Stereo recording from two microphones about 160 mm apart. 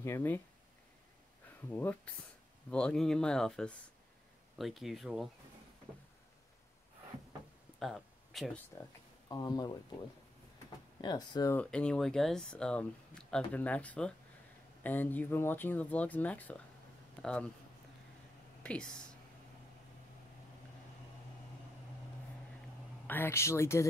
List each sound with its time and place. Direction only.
0.0 s speech: 15° left (ahead or behind)
1.7 s speech: 10° left (ahead or behind)
7.8 s a sound: centre (ahead or behind)
8.7 s speech: 20° left (ahead or behind)
11.0 s speech: 25° left (ahead or behind)
11.5 s speech: 5° left (ahead or behind)
18.6 s speech: 5° left (ahead or behind)
23.0 s speech: 15° left (ahead or behind)